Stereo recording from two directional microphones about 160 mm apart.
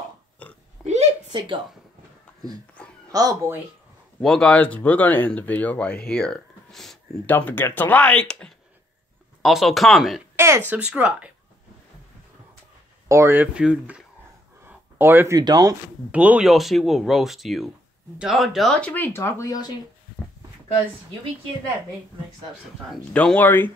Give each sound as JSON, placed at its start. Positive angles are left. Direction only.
{"t": 0.4, "sound": "pig", "side_deg": 10}
{"t": 0.8, "sound": "a sound", "side_deg": -5}
{"t": 1.3, "sound": "speech", "side_deg": -30}
{"t": 2.8, "sound": "a sound", "side_deg": 10}
{"t": 3.1, "sound": "speech", "side_deg": -20}
{"t": 4.2, "sound": "speech", "side_deg": 5}
{"t": 7.3, "sound": "speech", "side_deg": 10}
{"t": 10.3, "sound": "speech", "side_deg": -15}
{"t": 13.1, "sound": "speech", "side_deg": -15}
{"t": 14.6, "sound": "a sound", "side_deg": -15}
{"t": 15.4, "sound": "speech", "side_deg": -25}
{"t": 16.1, "sound": "speech", "side_deg": -10}
{"t": 22.8, "sound": "speech", "side_deg": 5}